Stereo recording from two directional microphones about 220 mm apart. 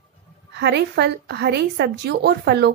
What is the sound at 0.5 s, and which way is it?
A woman's voice, 50° right (ahead or behind).